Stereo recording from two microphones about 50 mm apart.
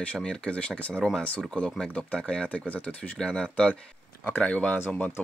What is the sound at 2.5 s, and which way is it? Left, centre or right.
Speech, left.